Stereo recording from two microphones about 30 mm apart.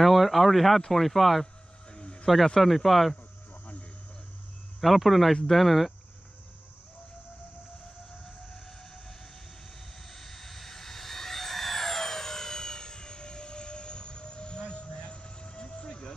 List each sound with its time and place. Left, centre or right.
0.0 s speech: centre
1.9 s a sound: left
2.6 s speech: centre
4.7 s speech: centre
10.0 s vehicle: centre; by 16.1 s left